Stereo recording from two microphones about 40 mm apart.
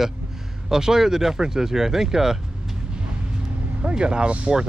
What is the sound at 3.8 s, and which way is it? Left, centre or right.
Speech, right.